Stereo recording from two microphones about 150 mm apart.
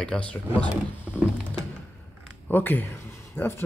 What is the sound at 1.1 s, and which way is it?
Typing, 10° right (ahead or behind).